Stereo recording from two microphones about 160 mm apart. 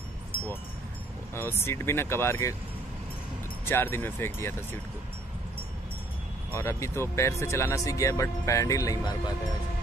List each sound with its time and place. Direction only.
1.3 s speech: 15° left (ahead or behind)
3.6 s speech: 15° left (ahead or behind)
6.5 s speech: 15° left (ahead or behind)